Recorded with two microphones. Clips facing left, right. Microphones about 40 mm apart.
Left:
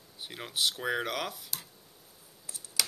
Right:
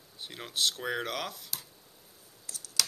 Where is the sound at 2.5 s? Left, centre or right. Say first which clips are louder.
Right 1 dB; centre.